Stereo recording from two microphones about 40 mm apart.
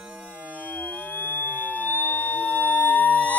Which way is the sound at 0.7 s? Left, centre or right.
Left.